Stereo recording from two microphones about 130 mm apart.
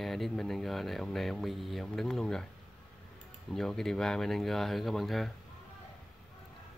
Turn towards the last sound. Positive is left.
turn(degrees=0)  # may be behind; listen again after turning